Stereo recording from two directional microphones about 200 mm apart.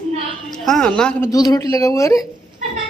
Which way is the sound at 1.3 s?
20° left (ahead or behind).